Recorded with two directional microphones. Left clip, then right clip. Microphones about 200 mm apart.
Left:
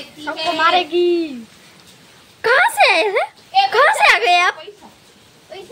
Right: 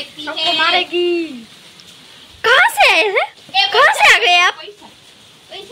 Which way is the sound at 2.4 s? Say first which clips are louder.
Right 2 dB; centre (ahead or behind).